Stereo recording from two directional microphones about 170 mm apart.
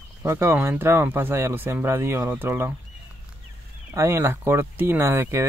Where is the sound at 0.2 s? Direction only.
15° right (ahead or behind).